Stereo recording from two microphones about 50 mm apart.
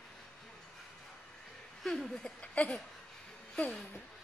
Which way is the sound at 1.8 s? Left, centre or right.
Centre.